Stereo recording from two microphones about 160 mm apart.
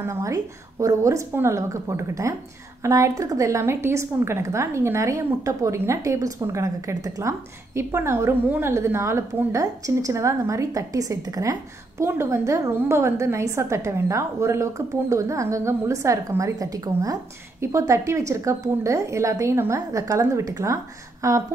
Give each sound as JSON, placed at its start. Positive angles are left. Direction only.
{"t": 0.0, "sound": "a woman's voice", "side_deg": -20}